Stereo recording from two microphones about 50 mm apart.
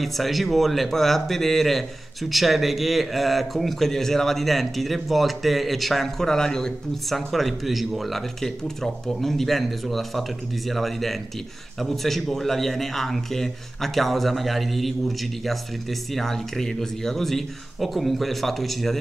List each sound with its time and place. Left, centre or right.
0.0 s a man's voice: centre